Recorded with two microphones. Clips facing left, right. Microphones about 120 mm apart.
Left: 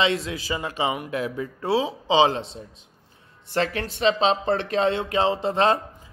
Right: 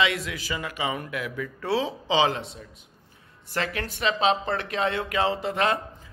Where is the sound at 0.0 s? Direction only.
25° left (ahead or behind).